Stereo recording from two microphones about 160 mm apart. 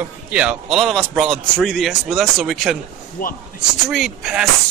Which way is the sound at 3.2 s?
65° left (ahead or behind).